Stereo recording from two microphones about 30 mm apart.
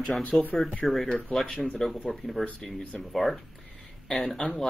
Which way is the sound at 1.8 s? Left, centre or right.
Centre.